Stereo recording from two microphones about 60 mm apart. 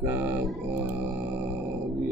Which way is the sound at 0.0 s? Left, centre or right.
Right.